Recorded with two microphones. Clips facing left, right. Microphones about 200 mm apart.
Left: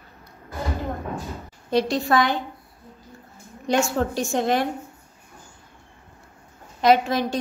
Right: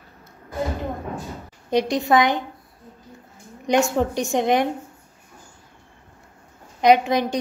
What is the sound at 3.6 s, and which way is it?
A woman's voice, 20° right (ahead or behind).